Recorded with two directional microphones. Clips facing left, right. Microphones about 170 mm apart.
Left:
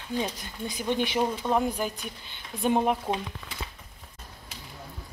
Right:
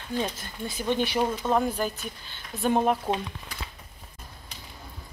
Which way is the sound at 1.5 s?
10° left (ahead or behind).